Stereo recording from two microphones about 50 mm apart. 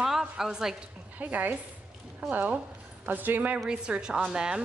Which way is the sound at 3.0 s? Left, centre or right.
Right.